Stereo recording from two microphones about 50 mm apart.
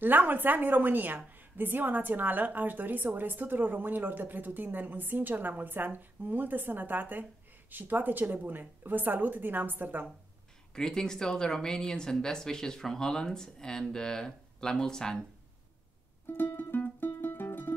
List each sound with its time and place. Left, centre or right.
0.0 s a woman's voice: right
10.7 s speech: centre
16.3 s music: left